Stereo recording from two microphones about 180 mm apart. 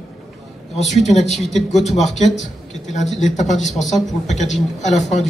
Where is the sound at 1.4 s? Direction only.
Centre (ahead or behind).